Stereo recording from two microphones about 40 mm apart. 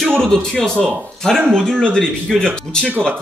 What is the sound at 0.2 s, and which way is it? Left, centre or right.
Speech, centre.